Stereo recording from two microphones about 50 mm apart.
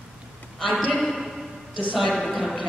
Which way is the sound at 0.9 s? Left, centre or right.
Centre.